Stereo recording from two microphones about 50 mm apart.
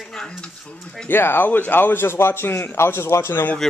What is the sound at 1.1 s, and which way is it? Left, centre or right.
A man's voice, left.